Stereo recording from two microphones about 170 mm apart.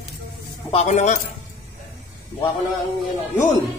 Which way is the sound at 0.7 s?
40° left (ahead or behind).